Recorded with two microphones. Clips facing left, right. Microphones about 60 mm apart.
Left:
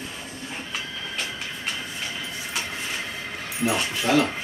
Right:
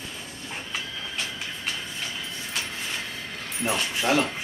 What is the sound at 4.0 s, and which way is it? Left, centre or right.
Speech, right.